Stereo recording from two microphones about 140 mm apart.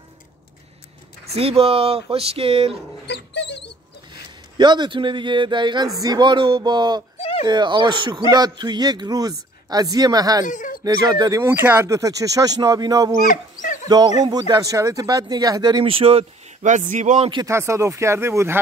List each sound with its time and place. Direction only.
1.3 s speech: 45° right (ahead or behind)
4.6 s speech: 35° right (ahead or behind)
7.2 s a sound: 40° left (ahead or behind)
7.4 s speech: 30° right (ahead or behind)
10.4 s speech: 70° left (ahead or behind)
10.8 s speech: 25° right (ahead or behind)
11.4 s speech: 15° right (ahead or behind)
13.2 s dog: 80° left
13.8 s speech: 30° right (ahead or behind)
16.6 s speech: 65° right (ahead or behind)
17.5 s speech: 20° right (ahead or behind)